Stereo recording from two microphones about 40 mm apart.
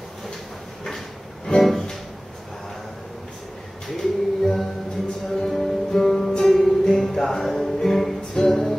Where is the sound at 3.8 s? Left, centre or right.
Centre.